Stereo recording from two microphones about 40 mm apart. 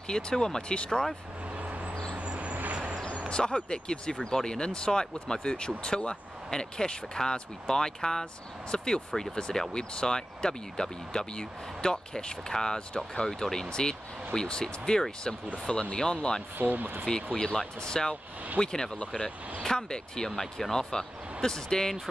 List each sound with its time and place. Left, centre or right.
0.1 s speech: centre
1.6 s vehicle: right
3.3 s speech: left
16.5 s speech: right
17.0 s speech: centre